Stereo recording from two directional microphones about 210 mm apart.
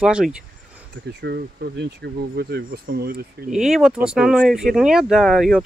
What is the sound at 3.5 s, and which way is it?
Speech, centre (ahead or behind).